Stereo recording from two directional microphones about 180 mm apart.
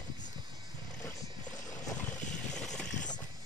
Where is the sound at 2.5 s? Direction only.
5° left (ahead or behind).